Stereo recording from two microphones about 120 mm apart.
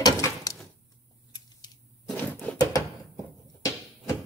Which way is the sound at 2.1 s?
10° left (ahead or behind).